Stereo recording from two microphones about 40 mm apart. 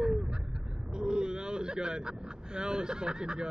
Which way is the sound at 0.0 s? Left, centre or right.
Right.